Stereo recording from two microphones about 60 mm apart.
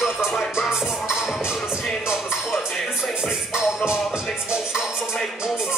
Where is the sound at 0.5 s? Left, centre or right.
Centre.